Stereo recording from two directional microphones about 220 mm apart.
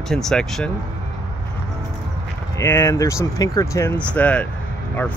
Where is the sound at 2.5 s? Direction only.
10° left (ahead or behind).